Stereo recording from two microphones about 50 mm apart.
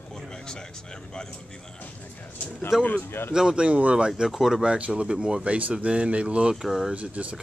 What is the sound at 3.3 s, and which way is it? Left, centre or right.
Speech, centre.